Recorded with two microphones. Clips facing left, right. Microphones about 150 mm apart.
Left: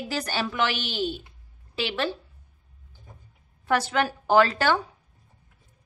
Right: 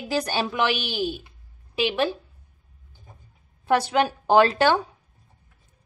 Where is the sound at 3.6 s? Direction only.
15° right (ahead or behind).